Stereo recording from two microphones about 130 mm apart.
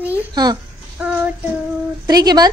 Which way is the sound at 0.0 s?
15° right (ahead or behind).